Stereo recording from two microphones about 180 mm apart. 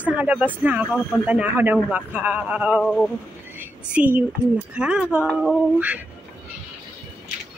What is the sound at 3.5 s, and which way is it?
A woman's voice, 10° right (ahead or behind).